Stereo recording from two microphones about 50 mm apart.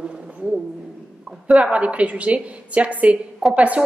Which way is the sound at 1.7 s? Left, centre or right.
Right.